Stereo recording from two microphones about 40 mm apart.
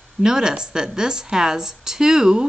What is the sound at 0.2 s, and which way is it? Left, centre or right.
A woman's voice, centre.